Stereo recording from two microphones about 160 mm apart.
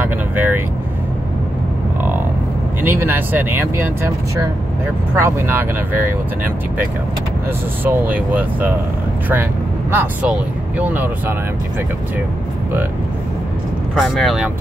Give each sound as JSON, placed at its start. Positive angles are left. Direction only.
{"t": 0.0, "sound": "vehicle", "side_deg": -10}
{"t": 2.8, "sound": "speech", "side_deg": -15}
{"t": 5.1, "sound": "speech", "side_deg": -15}
{"t": 7.8, "sound": "speech", "side_deg": -10}
{"t": 13.9, "sound": "speech", "side_deg": 0}